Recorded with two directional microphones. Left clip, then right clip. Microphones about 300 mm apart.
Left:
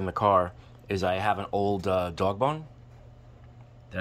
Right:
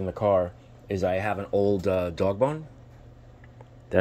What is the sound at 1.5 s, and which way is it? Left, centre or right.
Speech, centre.